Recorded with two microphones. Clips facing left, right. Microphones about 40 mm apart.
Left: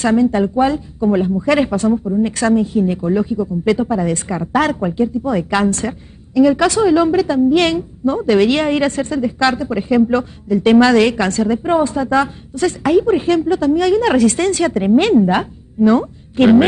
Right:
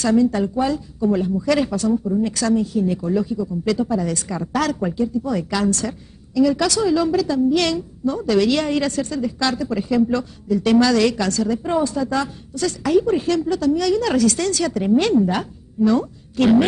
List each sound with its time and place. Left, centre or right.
0.0 s a woman's voice: left